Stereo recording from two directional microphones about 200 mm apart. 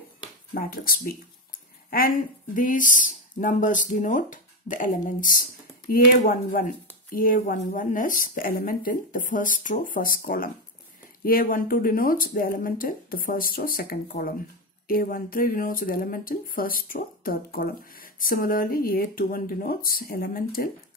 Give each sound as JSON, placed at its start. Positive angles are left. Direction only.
{"t": 0.6, "sound": "speech", "side_deg": 45}